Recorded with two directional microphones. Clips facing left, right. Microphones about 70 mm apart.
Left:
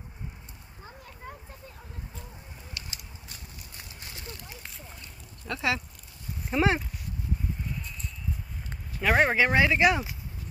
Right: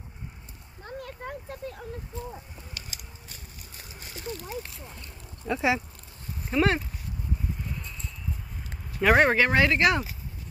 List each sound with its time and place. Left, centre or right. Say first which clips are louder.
0.8 s a sound: right 7 dB; right
5.5 s speech: right 4 dB; right
6.5 s speech: right 1 dB; centre
9.0 s speech: right 3 dB; centre
9.4 s speech: even; centre